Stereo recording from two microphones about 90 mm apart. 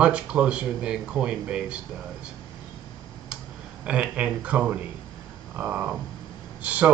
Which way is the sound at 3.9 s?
15° right (ahead or behind).